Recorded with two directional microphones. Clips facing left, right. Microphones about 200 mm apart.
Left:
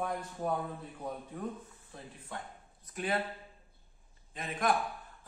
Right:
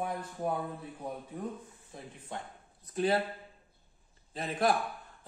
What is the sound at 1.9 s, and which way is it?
Speech, 15° right (ahead or behind).